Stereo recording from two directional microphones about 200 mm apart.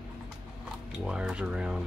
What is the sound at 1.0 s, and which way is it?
Speech, 5° right (ahead or behind).